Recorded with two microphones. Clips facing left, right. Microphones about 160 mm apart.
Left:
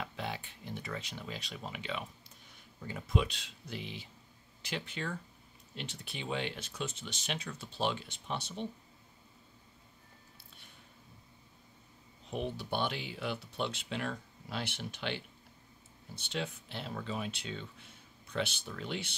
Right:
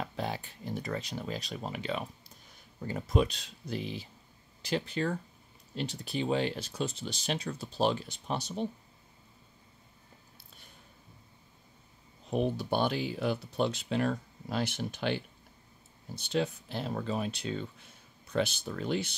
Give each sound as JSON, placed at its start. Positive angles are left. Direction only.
{"t": 0.0, "sound": "a sound", "side_deg": -40}
{"t": 2.8, "sound": "speech", "side_deg": -40}
{"t": 12.3, "sound": "speech", "side_deg": -40}